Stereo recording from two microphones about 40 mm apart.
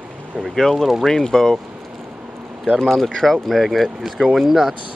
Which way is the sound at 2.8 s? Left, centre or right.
Centre.